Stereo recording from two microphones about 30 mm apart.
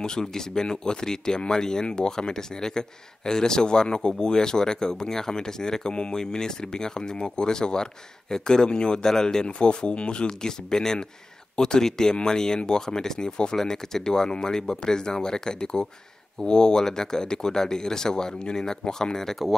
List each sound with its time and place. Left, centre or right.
0.0 s speech: left
10.4 s speech: left
19.1 s speech: centre